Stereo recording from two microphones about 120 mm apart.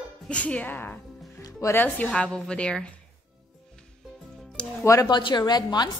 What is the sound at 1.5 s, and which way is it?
Speech, 25° left (ahead or behind).